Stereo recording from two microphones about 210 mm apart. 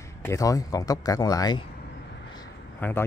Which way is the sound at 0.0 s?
15° left (ahead or behind).